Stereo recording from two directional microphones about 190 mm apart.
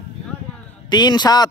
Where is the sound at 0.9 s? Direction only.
20° left (ahead or behind).